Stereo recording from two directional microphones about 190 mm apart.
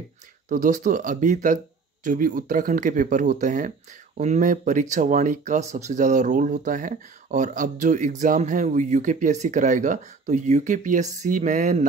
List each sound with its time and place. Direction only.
0.5 s speech: 40° right (ahead or behind)